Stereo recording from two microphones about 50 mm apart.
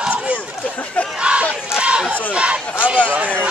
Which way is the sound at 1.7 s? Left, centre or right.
Centre.